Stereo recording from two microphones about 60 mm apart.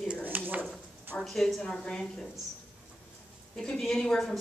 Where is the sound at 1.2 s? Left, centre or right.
Centre.